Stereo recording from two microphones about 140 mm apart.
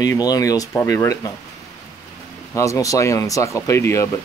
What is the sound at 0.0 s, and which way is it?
Speech, 25° left (ahead or behind).